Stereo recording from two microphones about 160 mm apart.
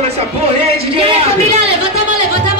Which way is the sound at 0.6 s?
40° right (ahead or behind).